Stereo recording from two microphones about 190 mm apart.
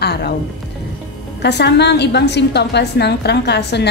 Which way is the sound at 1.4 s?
60° left (ahead or behind).